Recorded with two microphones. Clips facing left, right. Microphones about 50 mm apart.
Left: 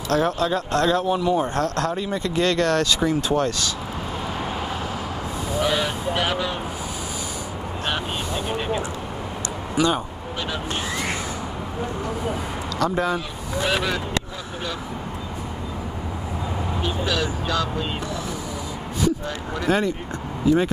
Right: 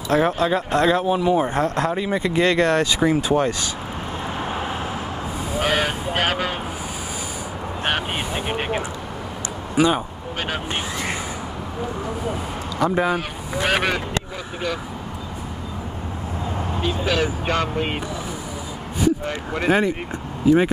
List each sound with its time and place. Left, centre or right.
0.1 s speech: centre
4.4 s vehicle: right
5.6 s a sound: right
8.4 s a sound: right
9.8 s speech: centre
12.7 s speech: centre
13.7 s vehicle: right
16.8 s speech: right
19.2 s a sound: right
20.4 s speech: right